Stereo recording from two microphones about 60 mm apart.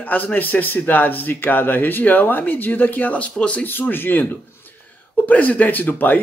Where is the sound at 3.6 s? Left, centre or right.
Left.